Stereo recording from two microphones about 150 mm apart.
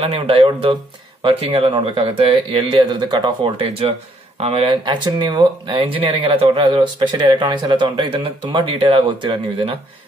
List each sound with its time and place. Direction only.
0.0 s speech: 40° right (ahead or behind)